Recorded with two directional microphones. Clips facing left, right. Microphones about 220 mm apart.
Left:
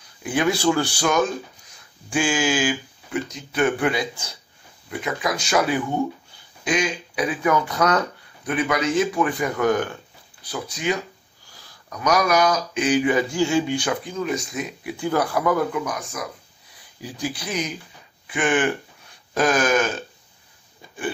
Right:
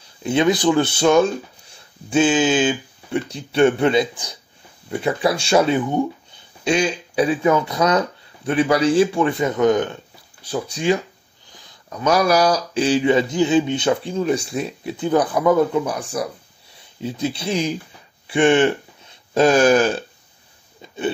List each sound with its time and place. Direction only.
0.2 s speech: 25° right (ahead or behind)
5.0 s speech: 30° right (ahead or behind)
8.5 s speech: 30° right (ahead or behind)